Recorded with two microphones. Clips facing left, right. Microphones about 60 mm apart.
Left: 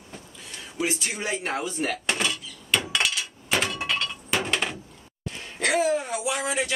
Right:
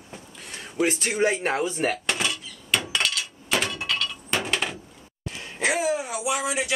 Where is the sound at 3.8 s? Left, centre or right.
Left.